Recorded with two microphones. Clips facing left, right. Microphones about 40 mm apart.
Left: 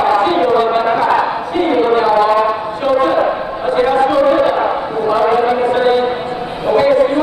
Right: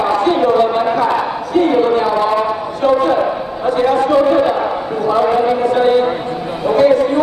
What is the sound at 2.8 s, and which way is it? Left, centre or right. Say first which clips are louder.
A man's voice: even; left.